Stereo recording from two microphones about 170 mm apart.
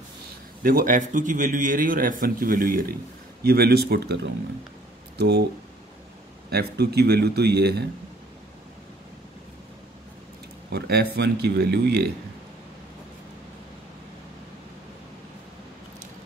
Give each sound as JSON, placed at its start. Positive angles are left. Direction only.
{"t": 0.6, "sound": "a man's voice", "side_deg": -55}
{"t": 6.5, "sound": "speech", "side_deg": -75}
{"t": 10.7, "sound": "speech", "side_deg": -70}